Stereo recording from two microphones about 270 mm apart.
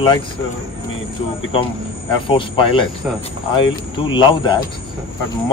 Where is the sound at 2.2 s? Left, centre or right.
Centre.